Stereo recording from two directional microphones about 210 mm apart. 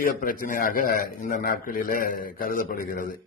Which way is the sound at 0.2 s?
40° left (ahead or behind).